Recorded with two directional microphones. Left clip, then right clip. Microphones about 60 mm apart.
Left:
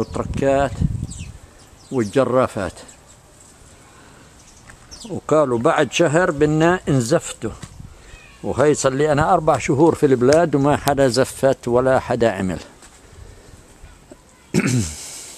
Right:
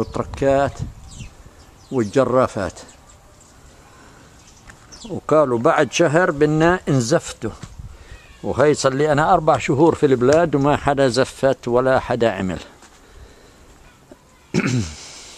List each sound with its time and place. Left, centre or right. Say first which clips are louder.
0.0 s speech: even; centre
2.0 s speech: right 1 dB; right
4.6 s speech: even; centre
8.5 s speech: even; centre
11.1 s speech: left 1 dB; left
14.5 s a sound: left 1 dB; left